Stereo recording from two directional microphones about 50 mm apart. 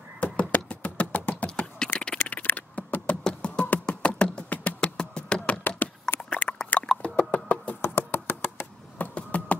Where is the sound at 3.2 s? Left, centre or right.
Centre.